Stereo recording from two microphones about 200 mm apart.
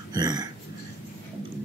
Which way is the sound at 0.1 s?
20° right (ahead or behind).